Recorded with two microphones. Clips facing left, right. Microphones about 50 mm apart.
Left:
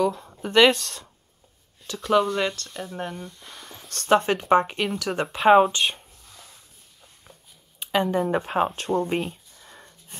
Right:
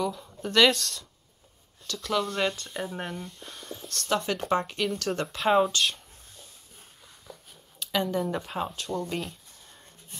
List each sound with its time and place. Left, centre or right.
0.1 s a sound: left
0.4 s speech: left
1.9 s speech: centre
2.5 s speech: centre
4.1 s speech: left
7.8 s speech: left